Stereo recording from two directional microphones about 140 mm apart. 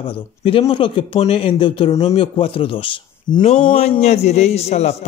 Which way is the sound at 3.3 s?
55° left (ahead or behind).